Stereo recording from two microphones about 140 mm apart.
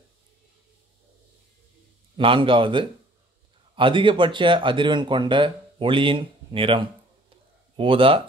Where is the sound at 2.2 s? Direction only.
40° right (ahead or behind).